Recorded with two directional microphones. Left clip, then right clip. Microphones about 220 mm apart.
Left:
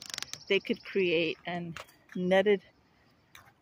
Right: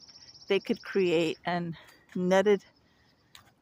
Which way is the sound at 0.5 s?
15° right (ahead or behind).